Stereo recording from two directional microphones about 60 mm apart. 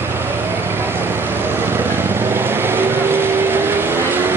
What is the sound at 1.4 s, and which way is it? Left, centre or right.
Vehicle, right.